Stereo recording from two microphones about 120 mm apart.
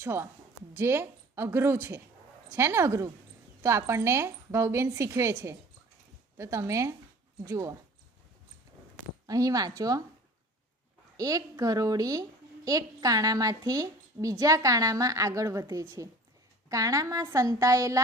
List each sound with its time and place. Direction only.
0.0 s a woman's voice: 20° right (ahead or behind)
9.2 s speech: 30° right (ahead or behind)
11.1 s a woman's voice: 30° right (ahead or behind)